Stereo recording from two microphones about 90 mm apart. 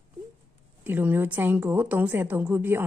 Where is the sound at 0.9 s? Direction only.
20° right (ahead or behind).